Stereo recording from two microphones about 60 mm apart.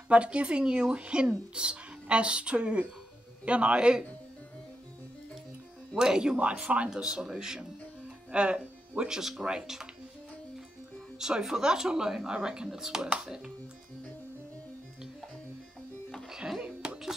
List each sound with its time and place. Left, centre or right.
0.1 s speech: right
5.9 s speech: centre
11.1 s speech: centre
16.3 s a sound: centre